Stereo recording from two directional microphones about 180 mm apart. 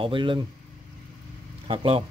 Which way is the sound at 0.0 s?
30° right (ahead or behind).